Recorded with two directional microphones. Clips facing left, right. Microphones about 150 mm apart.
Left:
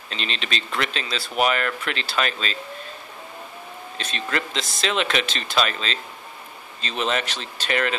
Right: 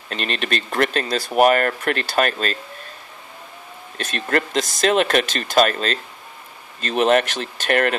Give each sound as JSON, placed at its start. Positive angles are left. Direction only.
{"t": 0.1, "sound": "speech", "side_deg": -50}
{"t": 4.0, "sound": "speech", "side_deg": -50}